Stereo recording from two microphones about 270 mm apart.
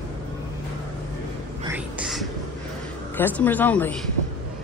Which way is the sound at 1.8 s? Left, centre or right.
Centre.